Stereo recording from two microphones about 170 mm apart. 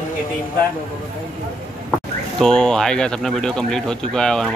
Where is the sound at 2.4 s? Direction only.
5° left (ahead or behind).